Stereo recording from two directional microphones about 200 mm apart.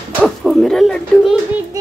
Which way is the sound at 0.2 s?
Centre (ahead or behind).